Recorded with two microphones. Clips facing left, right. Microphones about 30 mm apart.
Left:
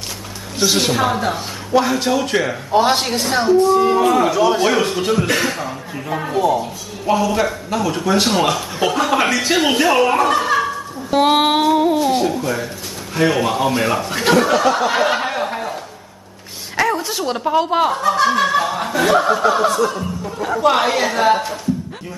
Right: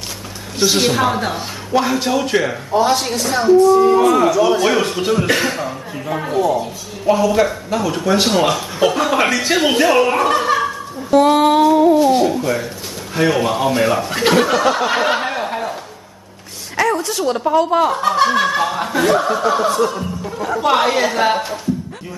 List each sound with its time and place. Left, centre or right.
0.6 s speech: centre
2.7 s speech: left
3.2 s a sound: left
3.9 s speech: centre
11.1 s a sound: left
12.0 s speech: centre
16.7 s a sound: centre
17.5 s a woman's voice: centre
18.4 s chuckle: centre
19.0 s a woman's voice: centre